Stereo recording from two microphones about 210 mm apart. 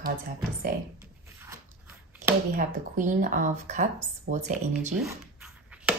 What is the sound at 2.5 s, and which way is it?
Speech, 35° right (ahead or behind).